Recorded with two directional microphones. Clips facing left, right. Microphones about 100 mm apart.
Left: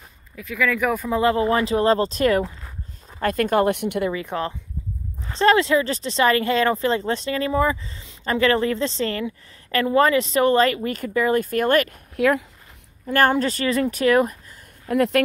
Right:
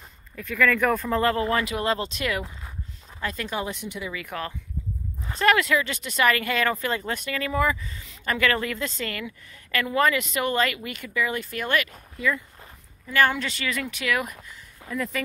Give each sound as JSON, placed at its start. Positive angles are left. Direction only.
{"t": 0.4, "sound": "speech", "side_deg": 5}
{"t": 1.2, "sound": "speech", "side_deg": 20}
{"t": 3.2, "sound": "speech", "side_deg": 50}
{"t": 4.1, "sound": "speech", "side_deg": 30}
{"t": 12.2, "sound": "speech", "side_deg": 80}
{"t": 13.0, "sound": "speech", "side_deg": 45}
{"t": 14.9, "sound": "speech", "side_deg": 70}